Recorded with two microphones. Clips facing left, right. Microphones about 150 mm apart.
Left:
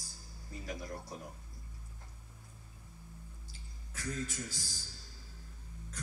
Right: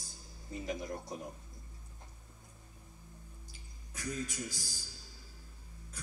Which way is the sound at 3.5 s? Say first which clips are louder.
Even; 15° right (ahead or behind).